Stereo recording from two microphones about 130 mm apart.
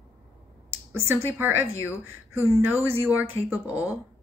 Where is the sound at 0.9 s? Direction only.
20° right (ahead or behind).